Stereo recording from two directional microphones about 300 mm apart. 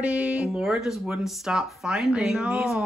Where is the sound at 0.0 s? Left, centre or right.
Centre.